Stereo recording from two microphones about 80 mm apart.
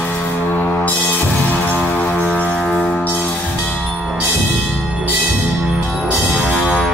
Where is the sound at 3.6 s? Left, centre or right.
Centre.